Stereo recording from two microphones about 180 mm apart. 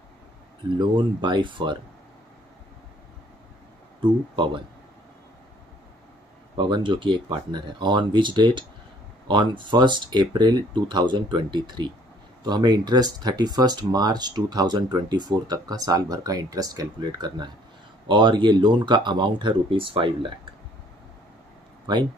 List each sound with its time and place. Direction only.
0.7 s speech: 25° right (ahead or behind)
4.0 s speech: 25° right (ahead or behind)
6.5 s speech: 25° right (ahead or behind)
21.9 s speech: 25° right (ahead or behind)